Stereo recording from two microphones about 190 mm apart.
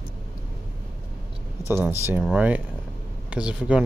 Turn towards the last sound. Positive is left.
turn(degrees=-5)  # may be behind; listen again after turning